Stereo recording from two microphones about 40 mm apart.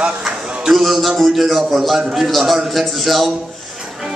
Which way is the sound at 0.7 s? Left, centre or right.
Centre.